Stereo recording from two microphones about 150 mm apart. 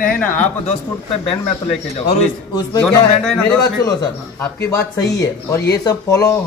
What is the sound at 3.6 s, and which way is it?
Speech, 25° left (ahead or behind).